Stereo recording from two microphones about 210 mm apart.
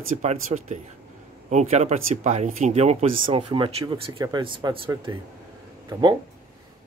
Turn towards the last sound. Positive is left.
turn(degrees=-15)  # may be behind; listen again after turning